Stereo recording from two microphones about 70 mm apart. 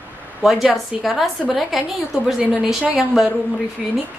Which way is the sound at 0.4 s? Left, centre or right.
Centre.